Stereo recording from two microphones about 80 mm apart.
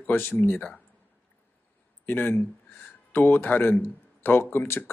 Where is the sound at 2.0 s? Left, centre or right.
Left.